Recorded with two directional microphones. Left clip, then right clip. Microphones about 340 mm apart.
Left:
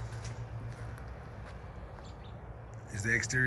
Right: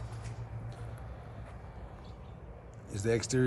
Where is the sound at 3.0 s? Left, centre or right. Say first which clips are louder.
Even; right.